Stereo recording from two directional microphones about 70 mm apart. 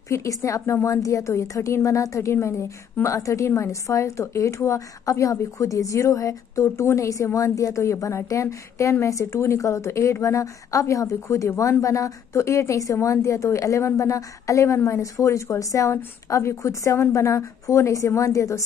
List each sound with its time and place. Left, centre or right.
0.1 s a woman's voice: left